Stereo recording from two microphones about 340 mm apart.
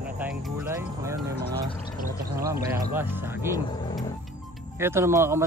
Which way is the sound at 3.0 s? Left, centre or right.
Centre.